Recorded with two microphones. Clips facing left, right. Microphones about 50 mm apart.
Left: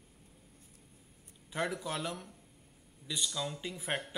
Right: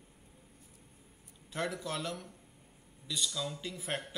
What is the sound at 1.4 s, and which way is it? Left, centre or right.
Speech, centre.